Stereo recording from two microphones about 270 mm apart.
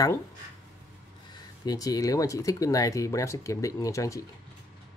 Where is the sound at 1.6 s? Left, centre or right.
Centre.